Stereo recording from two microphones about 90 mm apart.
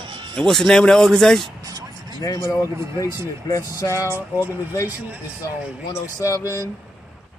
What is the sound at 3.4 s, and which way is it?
Speech, 35° left (ahead or behind).